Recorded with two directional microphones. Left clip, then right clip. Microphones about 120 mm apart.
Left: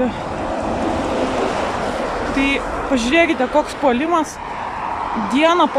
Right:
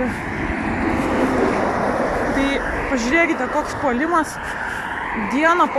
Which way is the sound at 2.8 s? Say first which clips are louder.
Left 3 dB; 25° left (ahead or behind).